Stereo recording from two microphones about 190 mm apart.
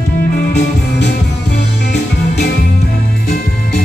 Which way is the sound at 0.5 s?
65° left (ahead or behind).